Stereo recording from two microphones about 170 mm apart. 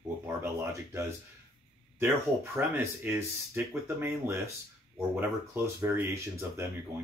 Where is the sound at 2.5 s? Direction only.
15° right (ahead or behind).